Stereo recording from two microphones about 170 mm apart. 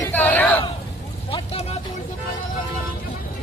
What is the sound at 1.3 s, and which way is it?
Vehicle, 35° left (ahead or behind).